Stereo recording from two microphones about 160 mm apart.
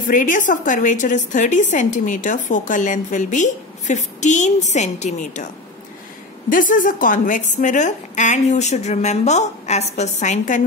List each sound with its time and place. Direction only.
0.1 s a woman's voice: 55° left (ahead or behind)
6.5 s a woman's voice: 55° left (ahead or behind)